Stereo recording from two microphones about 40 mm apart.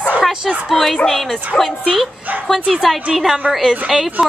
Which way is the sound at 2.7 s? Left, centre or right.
Centre.